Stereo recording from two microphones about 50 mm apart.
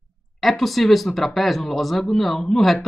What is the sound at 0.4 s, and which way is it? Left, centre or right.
Speech, centre.